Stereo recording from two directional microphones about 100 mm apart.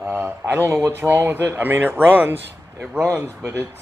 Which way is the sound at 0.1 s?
20° right (ahead or behind).